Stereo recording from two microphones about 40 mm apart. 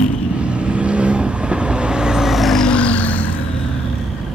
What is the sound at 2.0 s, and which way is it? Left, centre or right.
Vehicle, centre.